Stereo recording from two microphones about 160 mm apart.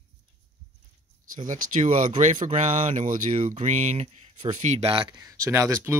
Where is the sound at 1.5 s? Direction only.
55° right (ahead or behind).